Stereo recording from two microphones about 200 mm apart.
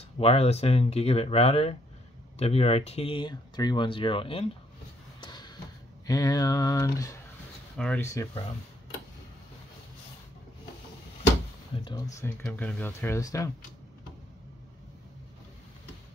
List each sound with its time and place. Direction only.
0.2 s speech: 30° left (ahead or behind)
5.2 s a sound: 20° left (ahead or behind)
6.0 s speech: 15° left (ahead or behind)
7.7 s speech: 5° left (ahead or behind)
11.7 s speech: 20° left (ahead or behind)